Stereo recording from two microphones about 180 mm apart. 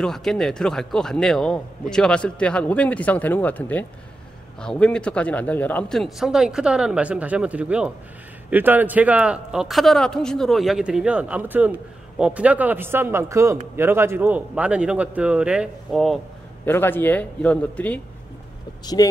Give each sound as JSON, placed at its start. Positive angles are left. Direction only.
{"t": 0.0, "sound": "a man's voice", "side_deg": 0}
{"t": 16.6, "sound": "a man's voice", "side_deg": 10}
{"t": 19.0, "sound": "speech", "side_deg": 20}